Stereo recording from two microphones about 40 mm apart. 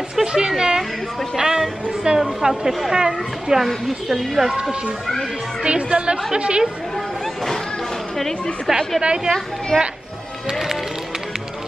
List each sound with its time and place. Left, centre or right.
0.1 s a sound: centre
1.3 s speech: centre
3.6 s a woman's voice: centre
5.6 s a woman's voice: right
9.0 s a woman's voice: right
9.7 s speech: centre